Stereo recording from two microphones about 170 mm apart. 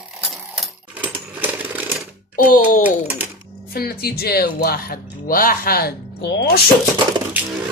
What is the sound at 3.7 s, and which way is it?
Speech, 65° left (ahead or behind).